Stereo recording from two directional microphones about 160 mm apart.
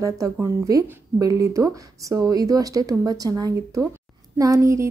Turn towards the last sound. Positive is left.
turn(degrees=-20)  # may be behind; listen again after turning